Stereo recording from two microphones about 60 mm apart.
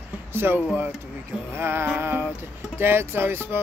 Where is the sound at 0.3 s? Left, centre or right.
Right.